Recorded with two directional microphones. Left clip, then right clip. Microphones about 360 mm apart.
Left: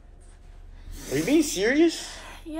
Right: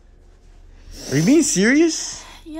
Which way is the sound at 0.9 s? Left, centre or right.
Right.